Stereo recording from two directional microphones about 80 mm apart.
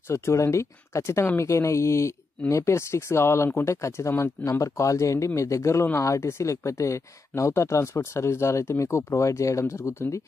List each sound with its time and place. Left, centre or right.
0.1 s speech: left